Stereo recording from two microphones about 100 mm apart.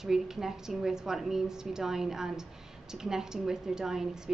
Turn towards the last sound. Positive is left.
turn(degrees=-5)  # may be behind; listen again after turning